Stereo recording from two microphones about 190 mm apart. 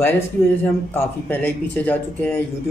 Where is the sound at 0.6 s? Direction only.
10° left (ahead or behind).